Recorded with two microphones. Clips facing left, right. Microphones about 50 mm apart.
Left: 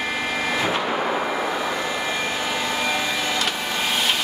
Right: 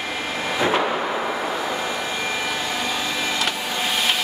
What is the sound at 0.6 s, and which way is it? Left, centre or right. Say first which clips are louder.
Vehicle: right 8 dB; centre.